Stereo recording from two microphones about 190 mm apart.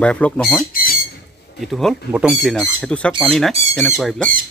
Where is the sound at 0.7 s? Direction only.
50° left (ahead or behind).